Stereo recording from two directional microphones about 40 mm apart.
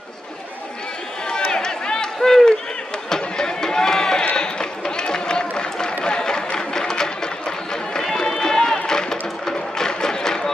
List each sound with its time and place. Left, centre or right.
1.3 s run: centre
5.6 s a sound: left
8.0 s music: centre